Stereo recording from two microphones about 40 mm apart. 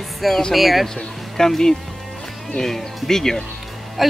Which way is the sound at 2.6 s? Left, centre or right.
Centre.